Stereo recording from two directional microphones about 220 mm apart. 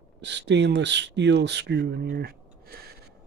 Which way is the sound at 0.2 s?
50° right (ahead or behind).